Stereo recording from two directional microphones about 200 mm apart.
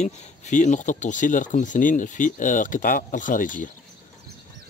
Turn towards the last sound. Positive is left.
turn(degrees=40)  # may be behind; listen again after turning